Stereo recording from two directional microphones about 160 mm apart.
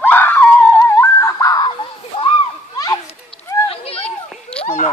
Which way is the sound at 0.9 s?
15° left (ahead or behind).